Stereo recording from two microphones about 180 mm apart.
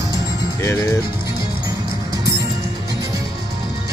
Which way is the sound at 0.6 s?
15° left (ahead or behind).